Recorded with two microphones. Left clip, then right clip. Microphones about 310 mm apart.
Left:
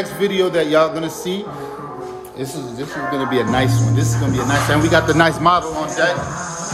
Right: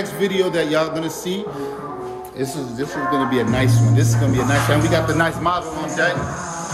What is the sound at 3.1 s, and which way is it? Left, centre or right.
Speech, centre.